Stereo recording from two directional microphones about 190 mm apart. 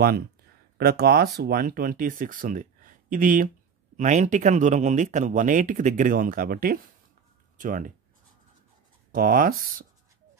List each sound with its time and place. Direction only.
0.7 s speech: 55° right (ahead or behind)
9.1 s speech: 50° right (ahead or behind)